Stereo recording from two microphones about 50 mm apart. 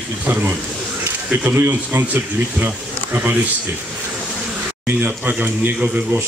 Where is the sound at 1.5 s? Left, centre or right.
Right.